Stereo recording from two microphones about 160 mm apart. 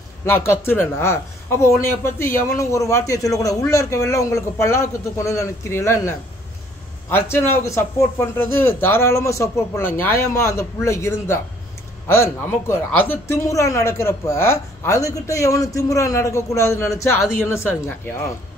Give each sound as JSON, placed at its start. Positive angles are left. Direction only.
{"t": 0.2, "sound": "speech", "side_deg": 15}